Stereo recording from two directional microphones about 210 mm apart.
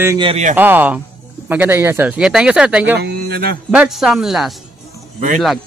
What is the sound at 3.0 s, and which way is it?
Speech, 50° right (ahead or behind).